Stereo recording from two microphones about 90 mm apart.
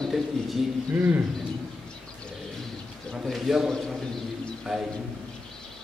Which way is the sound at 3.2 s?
5° right (ahead or behind).